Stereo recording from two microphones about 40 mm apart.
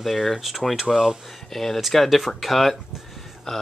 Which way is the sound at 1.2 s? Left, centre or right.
Centre.